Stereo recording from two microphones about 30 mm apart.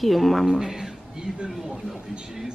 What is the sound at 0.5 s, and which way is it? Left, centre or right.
Speech, centre.